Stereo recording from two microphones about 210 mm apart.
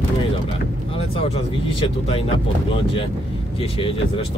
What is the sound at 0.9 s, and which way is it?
Speech, 25° left (ahead or behind).